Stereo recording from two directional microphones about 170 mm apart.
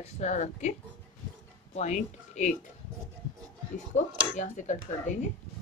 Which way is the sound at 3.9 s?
45° left (ahead or behind).